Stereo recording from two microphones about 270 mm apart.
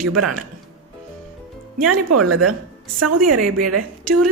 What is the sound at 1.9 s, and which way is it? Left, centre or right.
A woman's voice, right.